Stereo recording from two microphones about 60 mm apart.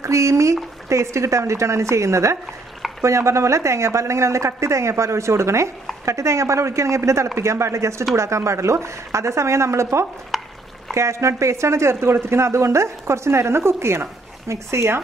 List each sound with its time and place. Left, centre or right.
0.0 s speech: right
10.3 s stir: centre
11.0 s speech: right